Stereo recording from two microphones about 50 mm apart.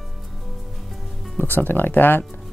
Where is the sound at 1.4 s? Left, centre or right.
Left.